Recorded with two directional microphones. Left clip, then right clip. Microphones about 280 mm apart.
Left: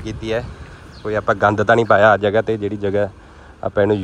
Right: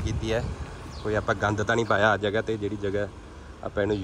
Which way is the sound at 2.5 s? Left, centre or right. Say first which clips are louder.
Left 9 dB; centre.